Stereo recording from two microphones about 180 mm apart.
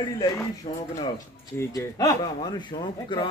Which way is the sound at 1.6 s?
20° left (ahead or behind).